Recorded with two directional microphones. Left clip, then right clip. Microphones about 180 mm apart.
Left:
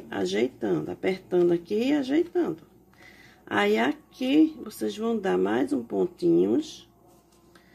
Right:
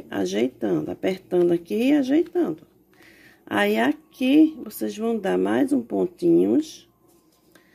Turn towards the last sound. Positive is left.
turn(degrees=-40)  # may be behind; listen again after turning